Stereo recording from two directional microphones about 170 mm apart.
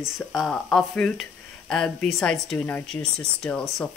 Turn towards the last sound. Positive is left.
turn(degrees=5)  # may be behind; listen again after turning